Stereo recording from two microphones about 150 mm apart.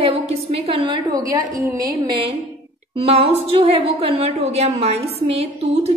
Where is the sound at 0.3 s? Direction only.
40° right (ahead or behind).